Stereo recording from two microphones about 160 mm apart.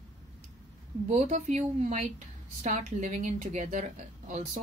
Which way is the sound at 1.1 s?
45° right (ahead or behind).